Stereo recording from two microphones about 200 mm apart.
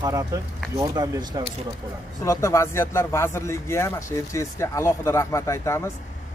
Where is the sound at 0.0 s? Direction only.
15° right (ahead or behind).